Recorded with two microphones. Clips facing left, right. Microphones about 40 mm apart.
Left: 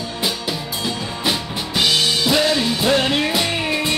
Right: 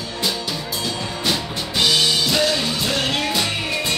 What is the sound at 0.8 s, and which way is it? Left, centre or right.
Music, centre.